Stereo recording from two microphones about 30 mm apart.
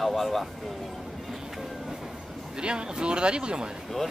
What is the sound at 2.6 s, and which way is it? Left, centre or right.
Speech, right.